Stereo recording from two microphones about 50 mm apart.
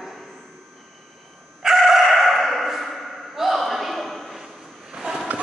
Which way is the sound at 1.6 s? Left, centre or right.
Centre.